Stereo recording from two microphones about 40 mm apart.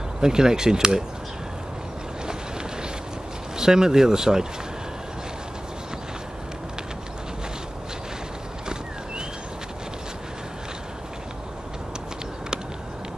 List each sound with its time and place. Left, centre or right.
0.2 s speech: centre
3.5 s speech: centre